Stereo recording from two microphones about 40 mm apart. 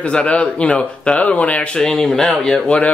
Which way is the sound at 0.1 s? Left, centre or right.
Left.